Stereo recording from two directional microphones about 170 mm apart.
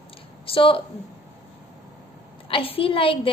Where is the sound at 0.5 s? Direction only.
30° left (ahead or behind).